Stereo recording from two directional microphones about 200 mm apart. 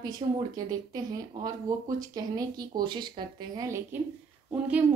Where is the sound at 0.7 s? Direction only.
20° right (ahead or behind).